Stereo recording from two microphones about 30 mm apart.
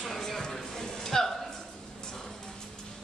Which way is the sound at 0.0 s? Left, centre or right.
Centre.